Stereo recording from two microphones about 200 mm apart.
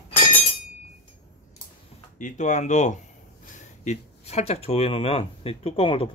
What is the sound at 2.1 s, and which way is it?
Speech, 40° left (ahead or behind).